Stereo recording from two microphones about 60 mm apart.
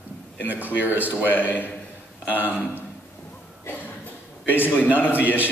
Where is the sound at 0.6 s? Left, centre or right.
Right.